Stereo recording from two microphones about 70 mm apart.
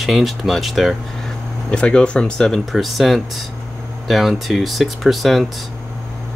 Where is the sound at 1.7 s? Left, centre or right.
Centre.